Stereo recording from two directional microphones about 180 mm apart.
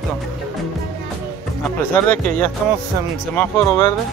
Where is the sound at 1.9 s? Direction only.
10° left (ahead or behind).